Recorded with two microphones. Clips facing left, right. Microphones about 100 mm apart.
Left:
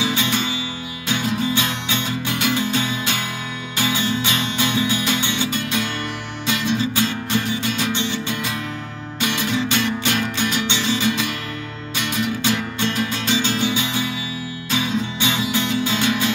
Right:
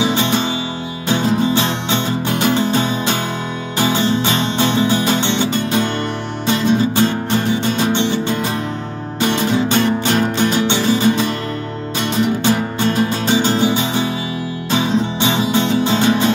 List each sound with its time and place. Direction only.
0.0 s music: 25° right (ahead or behind)
6.4 s music: 40° right (ahead or behind)
8.0 s music: 55° right (ahead or behind)
9.4 s music: 40° right (ahead or behind)
14.7 s music: 30° right (ahead or behind)
15.9 s music: 40° right (ahead or behind)